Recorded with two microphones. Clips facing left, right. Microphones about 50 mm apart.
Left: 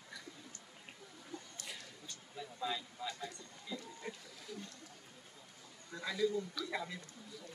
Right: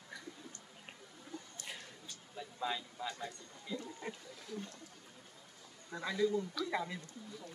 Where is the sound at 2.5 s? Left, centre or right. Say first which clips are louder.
Right 2 dB; right.